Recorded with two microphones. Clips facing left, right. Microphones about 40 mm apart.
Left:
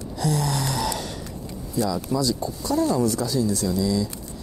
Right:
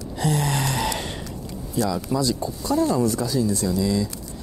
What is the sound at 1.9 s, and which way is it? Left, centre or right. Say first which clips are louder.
Speech: even; right.